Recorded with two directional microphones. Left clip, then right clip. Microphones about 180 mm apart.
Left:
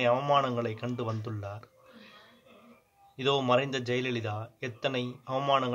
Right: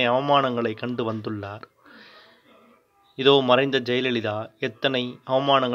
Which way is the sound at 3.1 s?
30° right (ahead or behind).